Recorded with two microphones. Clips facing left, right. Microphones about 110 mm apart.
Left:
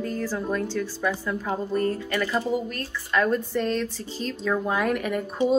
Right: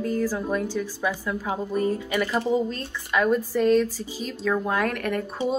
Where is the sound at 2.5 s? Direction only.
25° right (ahead or behind).